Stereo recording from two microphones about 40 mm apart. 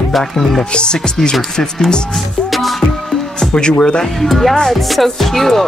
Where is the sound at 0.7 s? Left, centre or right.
Left.